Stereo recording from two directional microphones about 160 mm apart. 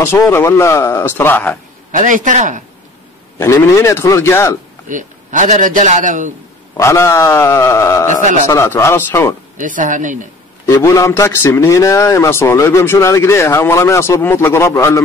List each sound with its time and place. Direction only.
0.0 s a man's voice: 15° left (ahead or behind)
1.9 s a man's voice: 55° right (ahead or behind)
3.3 s speech: 20° left (ahead or behind)
4.8 s a man's voice: 55° right (ahead or behind)
6.8 s a man's voice: 15° left (ahead or behind)
9.6 s a man's voice: 55° right (ahead or behind)
10.7 s a man's voice: 20° left (ahead or behind)